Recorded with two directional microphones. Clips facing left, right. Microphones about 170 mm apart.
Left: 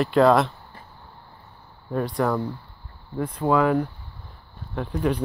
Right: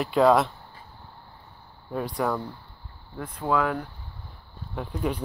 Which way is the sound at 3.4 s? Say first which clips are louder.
Left 4 dB; 15° left (ahead or behind).